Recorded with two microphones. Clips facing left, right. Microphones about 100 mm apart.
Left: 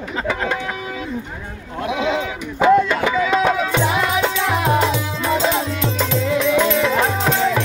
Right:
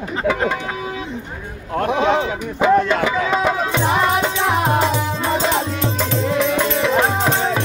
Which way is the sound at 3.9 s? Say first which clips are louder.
Right 2 dB; 45° right (ahead or behind).